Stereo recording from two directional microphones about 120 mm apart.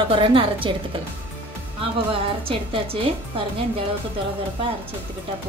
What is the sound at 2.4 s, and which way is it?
Speech, 50° right (ahead or behind).